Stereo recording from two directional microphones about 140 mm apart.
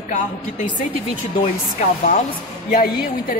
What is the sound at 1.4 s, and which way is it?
Speech, 55° left (ahead or behind).